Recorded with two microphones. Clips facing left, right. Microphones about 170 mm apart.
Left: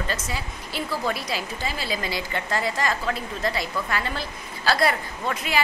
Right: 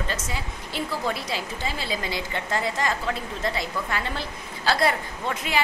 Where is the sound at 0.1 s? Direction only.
20° right (ahead or behind).